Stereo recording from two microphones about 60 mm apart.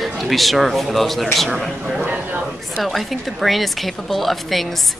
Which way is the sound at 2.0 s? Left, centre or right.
Right.